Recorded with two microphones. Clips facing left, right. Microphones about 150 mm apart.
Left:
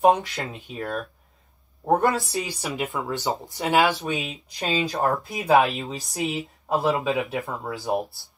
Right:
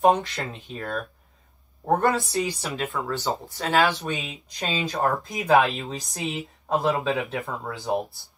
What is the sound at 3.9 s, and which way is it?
Speech, centre (ahead or behind).